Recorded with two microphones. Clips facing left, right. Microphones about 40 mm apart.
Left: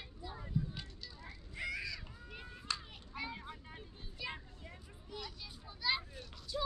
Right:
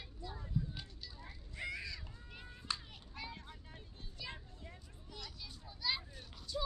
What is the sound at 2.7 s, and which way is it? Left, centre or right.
Children playing, centre.